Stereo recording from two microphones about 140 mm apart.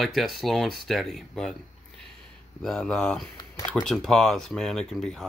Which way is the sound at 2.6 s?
5° left (ahead or behind).